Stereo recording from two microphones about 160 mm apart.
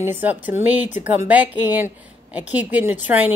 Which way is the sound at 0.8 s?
50° left (ahead or behind).